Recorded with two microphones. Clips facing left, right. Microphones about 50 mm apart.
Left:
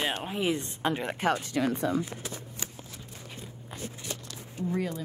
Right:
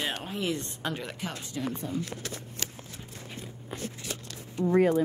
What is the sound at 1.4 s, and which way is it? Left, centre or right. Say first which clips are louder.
Speech: left 6 dB; left.